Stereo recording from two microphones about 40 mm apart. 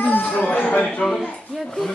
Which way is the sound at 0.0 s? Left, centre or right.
Left.